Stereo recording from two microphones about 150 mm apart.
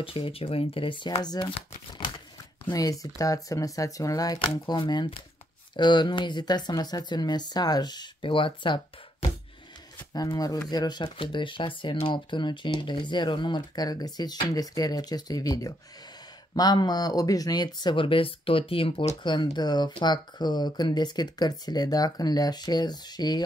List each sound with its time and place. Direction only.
0.0 s speech: 35° left (ahead or behind)
2.6 s speech: 25° left (ahead or behind)
10.1 s speech: 25° left (ahead or behind)